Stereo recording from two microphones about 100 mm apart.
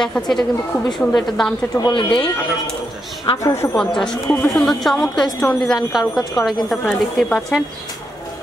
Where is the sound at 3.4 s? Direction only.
25° left (ahead or behind).